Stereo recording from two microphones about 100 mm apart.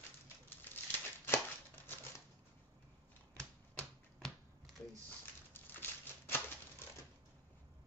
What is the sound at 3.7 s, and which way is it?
Finger snapping, 5° left (ahead or behind).